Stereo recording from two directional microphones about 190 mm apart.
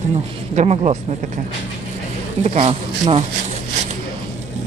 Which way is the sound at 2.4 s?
35° right (ahead or behind).